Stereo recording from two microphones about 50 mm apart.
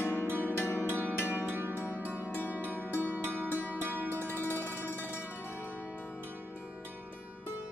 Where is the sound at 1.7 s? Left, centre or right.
Left.